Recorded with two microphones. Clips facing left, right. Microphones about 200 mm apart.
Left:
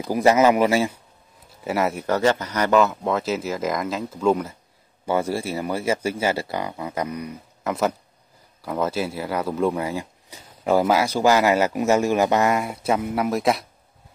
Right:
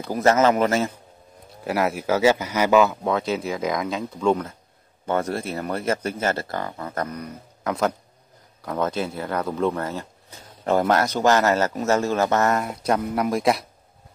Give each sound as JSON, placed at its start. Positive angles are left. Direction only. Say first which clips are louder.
{"t": 0.0, "sound": "a man's voice", "louder": "left 2 dB", "side_deg": 10}